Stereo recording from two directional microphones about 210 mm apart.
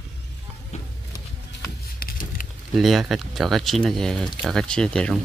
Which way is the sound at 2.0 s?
45° left (ahead or behind).